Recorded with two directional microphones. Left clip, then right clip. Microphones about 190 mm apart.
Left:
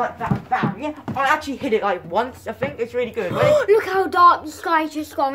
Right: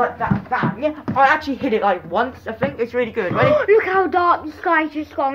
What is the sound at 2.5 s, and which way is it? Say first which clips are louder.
Speech: right 4 dB; centre (ahead or behind).